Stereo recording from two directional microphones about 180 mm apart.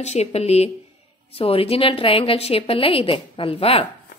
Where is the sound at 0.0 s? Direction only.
40° left (ahead or behind).